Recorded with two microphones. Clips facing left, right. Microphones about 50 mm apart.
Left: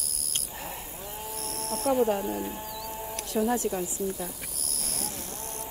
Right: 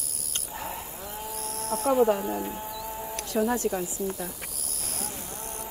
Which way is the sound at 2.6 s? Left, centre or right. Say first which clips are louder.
Right 2 dB; right.